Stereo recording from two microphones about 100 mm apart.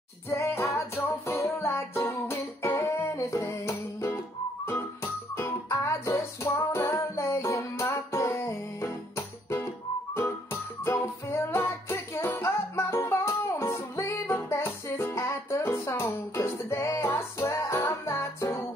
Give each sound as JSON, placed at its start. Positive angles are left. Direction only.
{"t": 0.3, "sound": "music", "side_deg": 25}